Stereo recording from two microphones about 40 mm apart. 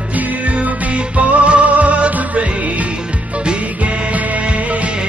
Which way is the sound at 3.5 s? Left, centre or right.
Right.